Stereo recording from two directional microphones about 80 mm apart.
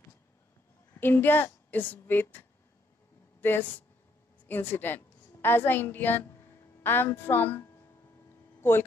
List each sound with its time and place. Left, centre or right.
0.9 s a woman's voice: left